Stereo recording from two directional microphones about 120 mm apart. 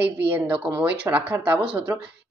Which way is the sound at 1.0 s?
10° right (ahead or behind).